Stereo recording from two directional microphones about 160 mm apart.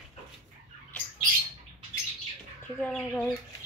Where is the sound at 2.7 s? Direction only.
5° left (ahead or behind).